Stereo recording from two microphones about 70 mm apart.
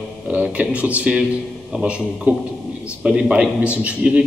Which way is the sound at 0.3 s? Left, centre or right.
Centre.